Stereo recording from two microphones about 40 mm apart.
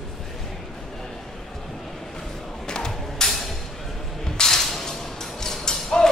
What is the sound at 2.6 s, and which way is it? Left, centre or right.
Music, centre.